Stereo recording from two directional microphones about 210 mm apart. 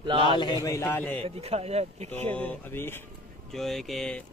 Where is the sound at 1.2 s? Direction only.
30° right (ahead or behind).